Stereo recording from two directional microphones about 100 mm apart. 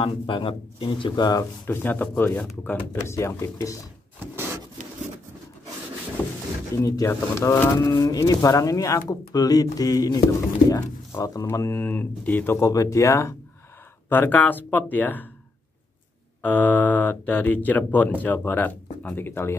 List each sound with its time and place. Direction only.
0.0 s speech: 60° left (ahead or behind); by 1.4 s 45° left (ahead or behind)
1.7 s speech: 20° left (ahead or behind)
6.2 s a sound: 25° left (ahead or behind)
6.7 s speech: 35° left (ahead or behind); by 12.5 s 15° left (ahead or behind)
12.5 s speech: 35° left (ahead or behind); by 15.2 s 20° left (ahead or behind)
16.4 s speech: 15° left (ahead or behind)